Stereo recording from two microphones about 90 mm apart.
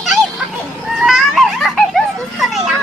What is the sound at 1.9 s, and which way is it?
Children playing, centre (ahead or behind).